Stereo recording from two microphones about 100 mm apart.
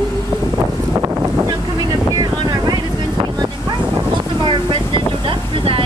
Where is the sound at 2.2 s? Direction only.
45° right (ahead or behind).